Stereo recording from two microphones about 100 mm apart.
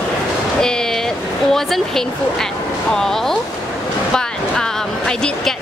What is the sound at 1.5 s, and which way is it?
A woman's voice, 5° left (ahead or behind).